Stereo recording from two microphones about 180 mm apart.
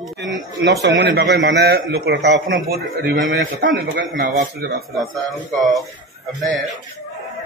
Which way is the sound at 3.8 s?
65° right (ahead or behind).